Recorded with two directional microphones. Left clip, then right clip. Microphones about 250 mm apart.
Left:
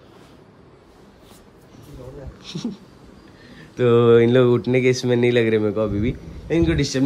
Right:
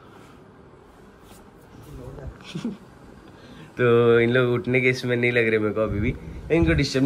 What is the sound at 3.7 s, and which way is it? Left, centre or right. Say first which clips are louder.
Speech: left 3 dB; centre.